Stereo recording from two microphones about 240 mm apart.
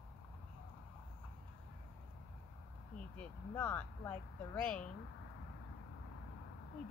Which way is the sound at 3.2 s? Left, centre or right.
Centre.